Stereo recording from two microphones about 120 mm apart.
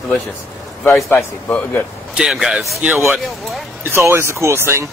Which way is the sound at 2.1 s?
5° right (ahead or behind).